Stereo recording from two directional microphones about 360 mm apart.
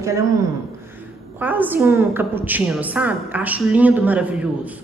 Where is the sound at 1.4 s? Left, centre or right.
Centre.